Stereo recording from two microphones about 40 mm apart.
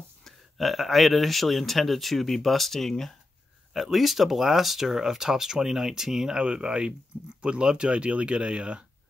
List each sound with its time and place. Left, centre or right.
0.2 s speech: centre
3.7 s speech: centre
6.3 s speech: right